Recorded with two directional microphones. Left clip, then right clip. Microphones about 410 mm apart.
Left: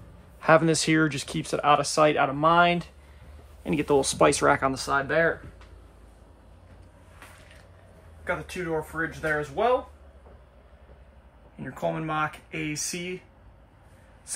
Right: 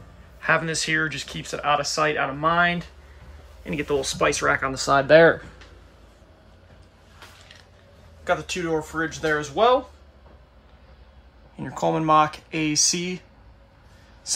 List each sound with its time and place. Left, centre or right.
0.4 s speech: centre
8.2 s speech: centre
11.6 s speech: centre
14.3 s a sound: centre